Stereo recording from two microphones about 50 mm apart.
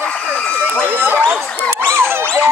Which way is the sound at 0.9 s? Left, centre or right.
Right.